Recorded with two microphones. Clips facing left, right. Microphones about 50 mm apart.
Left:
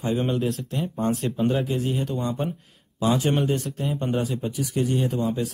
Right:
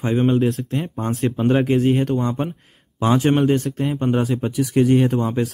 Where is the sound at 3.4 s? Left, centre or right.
Right.